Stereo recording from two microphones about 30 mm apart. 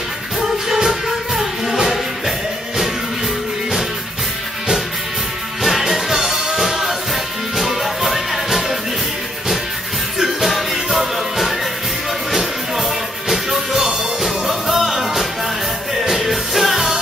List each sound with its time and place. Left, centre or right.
0.4 s music: centre
5.6 s music: centre
10.4 s music: centre
13.3 s music: centre